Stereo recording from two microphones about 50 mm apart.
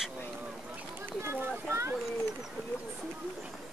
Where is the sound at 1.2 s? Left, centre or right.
Right.